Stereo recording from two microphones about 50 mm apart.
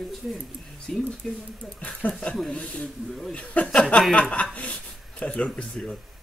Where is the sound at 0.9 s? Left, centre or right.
Centre.